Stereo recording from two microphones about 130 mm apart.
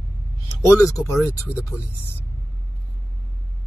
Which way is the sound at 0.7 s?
25° left (ahead or behind).